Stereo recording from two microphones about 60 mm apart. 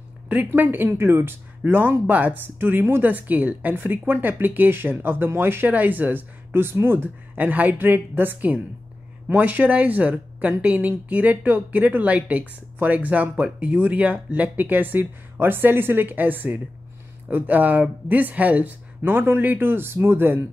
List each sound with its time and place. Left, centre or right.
0.5 s speech: right
1.6 s speech: right